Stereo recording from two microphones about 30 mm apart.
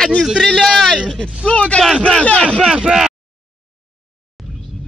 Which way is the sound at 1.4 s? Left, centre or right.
Left.